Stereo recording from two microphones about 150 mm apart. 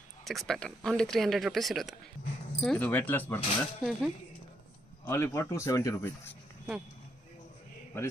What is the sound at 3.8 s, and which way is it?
Speech, centre (ahead or behind).